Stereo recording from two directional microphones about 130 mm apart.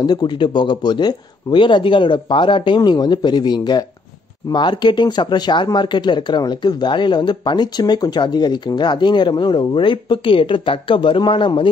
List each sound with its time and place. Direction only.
0.0 s speech: 35° left (ahead or behind)